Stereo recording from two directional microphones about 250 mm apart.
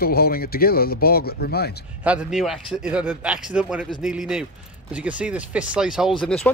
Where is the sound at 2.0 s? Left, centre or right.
Centre.